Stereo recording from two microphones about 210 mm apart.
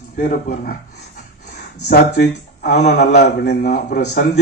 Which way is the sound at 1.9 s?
45° left (ahead or behind).